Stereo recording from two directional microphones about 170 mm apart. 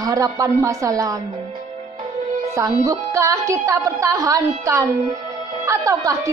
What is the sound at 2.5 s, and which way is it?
A woman's voice, 20° right (ahead or behind).